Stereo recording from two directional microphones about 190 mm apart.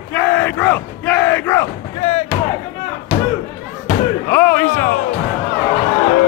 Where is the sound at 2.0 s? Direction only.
35° left (ahead or behind).